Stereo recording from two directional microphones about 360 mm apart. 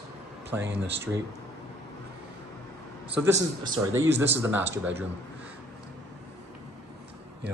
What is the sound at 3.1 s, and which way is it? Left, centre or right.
Speech, centre.